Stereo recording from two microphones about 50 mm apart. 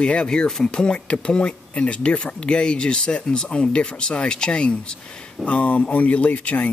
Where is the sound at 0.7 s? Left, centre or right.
Left.